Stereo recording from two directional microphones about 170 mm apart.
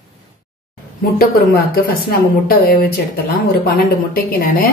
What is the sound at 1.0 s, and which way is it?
A woman's voice, 60° left (ahead or behind).